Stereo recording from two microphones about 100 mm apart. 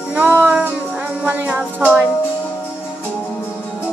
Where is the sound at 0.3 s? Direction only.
15° right (ahead or behind).